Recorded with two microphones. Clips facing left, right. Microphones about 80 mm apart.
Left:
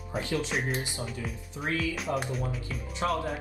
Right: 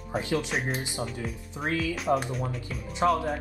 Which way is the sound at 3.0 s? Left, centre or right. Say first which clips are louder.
Right 6 dB; right.